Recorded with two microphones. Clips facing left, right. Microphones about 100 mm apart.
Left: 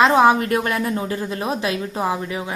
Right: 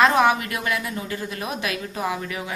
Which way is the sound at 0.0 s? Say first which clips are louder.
Left 4 dB; 25° left (ahead or behind).